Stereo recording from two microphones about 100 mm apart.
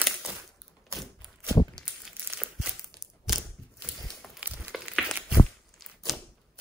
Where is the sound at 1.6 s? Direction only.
40° left (ahead or behind).